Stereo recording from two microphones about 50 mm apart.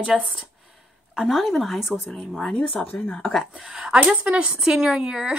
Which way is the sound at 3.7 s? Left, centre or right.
Centre.